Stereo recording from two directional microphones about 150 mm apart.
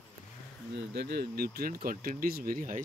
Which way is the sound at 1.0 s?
90° right.